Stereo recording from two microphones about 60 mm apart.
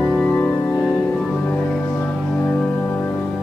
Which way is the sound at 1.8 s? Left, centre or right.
Left.